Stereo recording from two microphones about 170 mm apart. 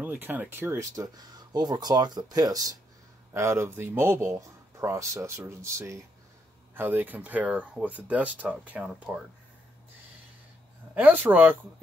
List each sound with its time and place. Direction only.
0.0 s speech: 10° right (ahead or behind)
11.0 s speech: 10° right (ahead or behind)